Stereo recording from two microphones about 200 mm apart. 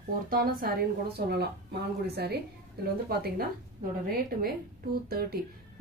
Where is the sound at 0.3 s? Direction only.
45° right (ahead or behind).